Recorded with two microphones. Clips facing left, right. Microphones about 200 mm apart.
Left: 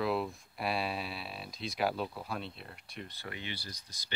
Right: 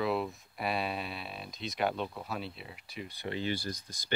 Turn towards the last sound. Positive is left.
turn(degrees=-50)  # may be behind; listen again after turning